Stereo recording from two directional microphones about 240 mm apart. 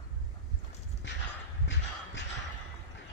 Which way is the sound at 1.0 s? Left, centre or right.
Left.